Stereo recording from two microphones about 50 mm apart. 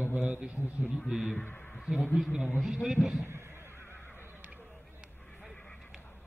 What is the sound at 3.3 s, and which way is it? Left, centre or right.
Neigh, right.